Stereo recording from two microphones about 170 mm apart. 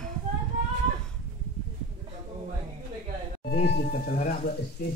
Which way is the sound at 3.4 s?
70° left (ahead or behind).